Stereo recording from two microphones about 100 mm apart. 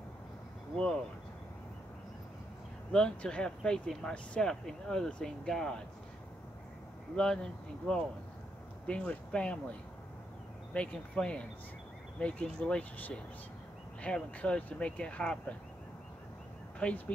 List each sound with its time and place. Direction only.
2.9 s speech: 10° left (ahead or behind)
7.8 s speech: 10° left (ahead or behind)
16.8 s speech: 15° left (ahead or behind)